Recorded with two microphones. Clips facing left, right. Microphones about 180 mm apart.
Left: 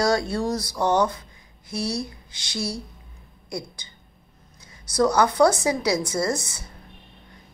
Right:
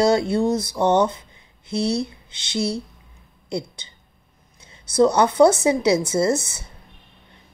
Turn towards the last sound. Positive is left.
turn(degrees=-25)  # may be behind; listen again after turning